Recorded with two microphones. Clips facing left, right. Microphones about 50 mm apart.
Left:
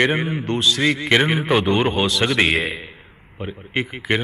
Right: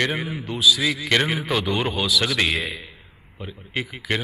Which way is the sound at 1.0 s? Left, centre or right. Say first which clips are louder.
Left 3 dB; centre.